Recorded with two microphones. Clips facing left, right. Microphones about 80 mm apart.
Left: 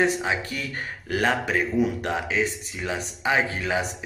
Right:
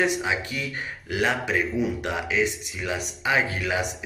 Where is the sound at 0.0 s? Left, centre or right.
Left.